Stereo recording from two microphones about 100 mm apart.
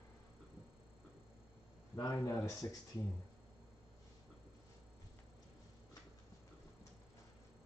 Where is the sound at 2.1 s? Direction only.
25° left (ahead or behind).